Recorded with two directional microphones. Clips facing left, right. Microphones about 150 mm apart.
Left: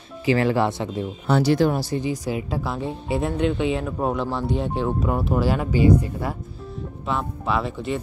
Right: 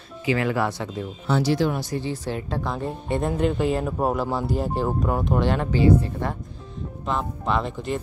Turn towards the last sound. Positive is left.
turn(degrees=0)  # may be behind; listen again after turning